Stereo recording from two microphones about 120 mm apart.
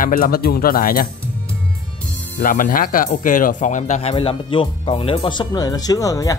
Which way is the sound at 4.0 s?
50° left (ahead or behind).